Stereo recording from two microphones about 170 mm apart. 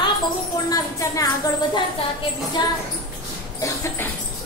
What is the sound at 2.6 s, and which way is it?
Speech, 25° left (ahead or behind).